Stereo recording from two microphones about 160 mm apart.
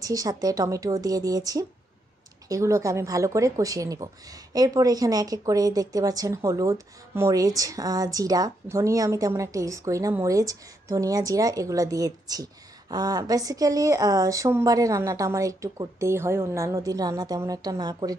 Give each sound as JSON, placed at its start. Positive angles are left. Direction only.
{"t": 0.0, "sound": "speech", "side_deg": -20}